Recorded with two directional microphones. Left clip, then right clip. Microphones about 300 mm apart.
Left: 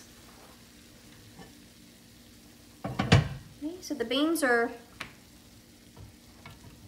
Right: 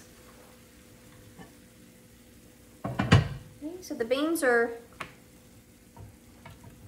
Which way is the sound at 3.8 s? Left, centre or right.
Centre.